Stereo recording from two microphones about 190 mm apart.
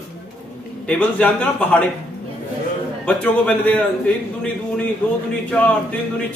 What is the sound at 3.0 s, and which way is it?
Speech, 5° left (ahead or behind).